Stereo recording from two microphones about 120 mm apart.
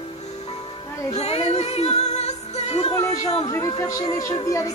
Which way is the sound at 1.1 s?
65° left (ahead or behind).